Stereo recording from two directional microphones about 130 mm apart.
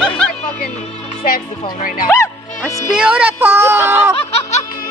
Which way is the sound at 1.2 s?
90° left.